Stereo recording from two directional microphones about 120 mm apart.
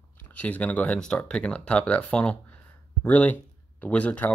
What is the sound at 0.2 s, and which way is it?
Speech, 15° left (ahead or behind).